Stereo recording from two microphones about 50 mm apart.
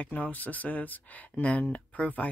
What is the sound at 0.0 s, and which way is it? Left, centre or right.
Speech, left.